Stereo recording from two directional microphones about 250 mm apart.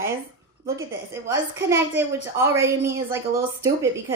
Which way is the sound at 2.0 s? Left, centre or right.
Centre.